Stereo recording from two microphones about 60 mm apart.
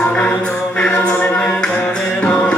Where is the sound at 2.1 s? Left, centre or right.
Centre.